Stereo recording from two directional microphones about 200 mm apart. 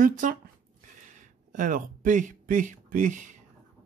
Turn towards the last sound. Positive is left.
turn(degrees=-40)  # may be behind; listen again after turning